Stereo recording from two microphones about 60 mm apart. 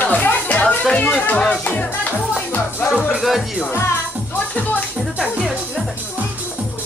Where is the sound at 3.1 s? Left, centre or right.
Centre.